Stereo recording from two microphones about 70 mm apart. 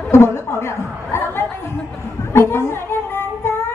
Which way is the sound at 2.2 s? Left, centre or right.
Left.